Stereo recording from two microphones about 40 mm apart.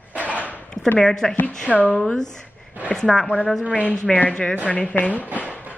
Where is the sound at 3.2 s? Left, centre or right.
Left.